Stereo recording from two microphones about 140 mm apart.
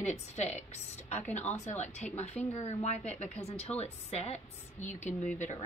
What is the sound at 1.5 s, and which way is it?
A woman's voice, 55° left (ahead or behind).